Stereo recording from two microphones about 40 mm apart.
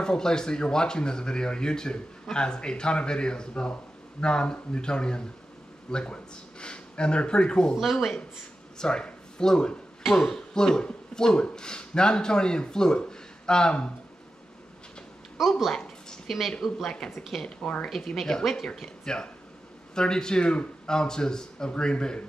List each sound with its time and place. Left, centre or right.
0.0 s speech: centre
7.8 s speech: centre
8.7 s speech: left
15.4 s speech: centre
19.1 s speech: centre